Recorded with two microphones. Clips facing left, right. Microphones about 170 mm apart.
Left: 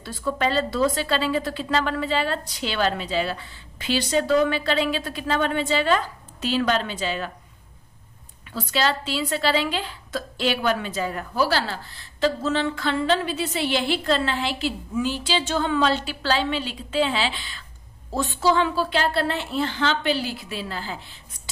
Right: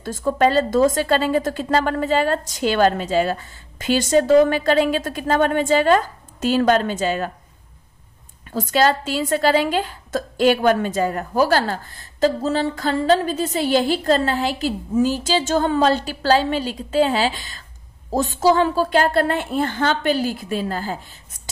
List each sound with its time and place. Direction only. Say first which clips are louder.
0.0 s speech: right 7 dB; 45° right (ahead or behind)
8.5 s speech: right 6 dB; 45° right (ahead or behind)